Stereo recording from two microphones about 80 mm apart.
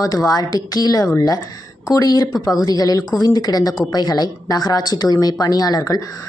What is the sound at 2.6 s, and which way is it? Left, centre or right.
Speech, left.